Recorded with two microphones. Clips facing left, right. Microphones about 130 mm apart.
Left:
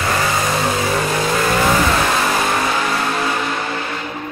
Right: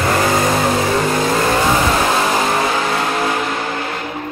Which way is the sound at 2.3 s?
25° right (ahead or behind).